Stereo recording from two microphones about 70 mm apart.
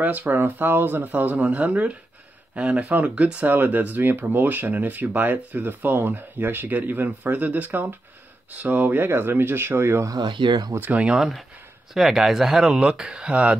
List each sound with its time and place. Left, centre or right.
0.0 s speech: right
10.1 s speech: right
10.8 s speech: centre
11.1 s speech: centre